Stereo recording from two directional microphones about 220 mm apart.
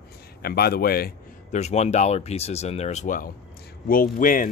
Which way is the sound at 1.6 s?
30° left (ahead or behind).